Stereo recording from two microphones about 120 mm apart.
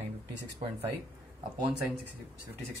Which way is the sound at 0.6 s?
55° right (ahead or behind).